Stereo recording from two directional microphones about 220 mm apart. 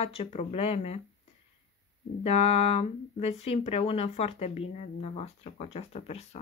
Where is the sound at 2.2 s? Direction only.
30° left (ahead or behind).